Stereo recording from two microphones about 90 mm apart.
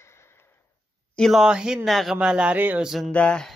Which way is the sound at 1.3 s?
5° right (ahead or behind).